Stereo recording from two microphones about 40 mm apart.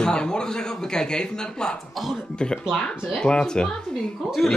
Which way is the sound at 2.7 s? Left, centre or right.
Centre.